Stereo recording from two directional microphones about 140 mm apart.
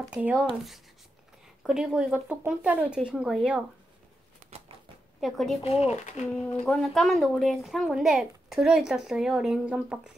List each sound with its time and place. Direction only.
0.0 s speech: 10° right (ahead or behind)
1.6 s speech: 5° right (ahead or behind)
5.2 s speech: centre (ahead or behind)
5.6 s speech: 45° left (ahead or behind)
6.6 s speech: 5° left (ahead or behind)